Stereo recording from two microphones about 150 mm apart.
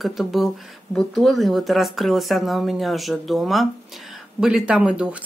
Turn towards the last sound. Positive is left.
turn(degrees=-5)  # may be behind; listen again after turning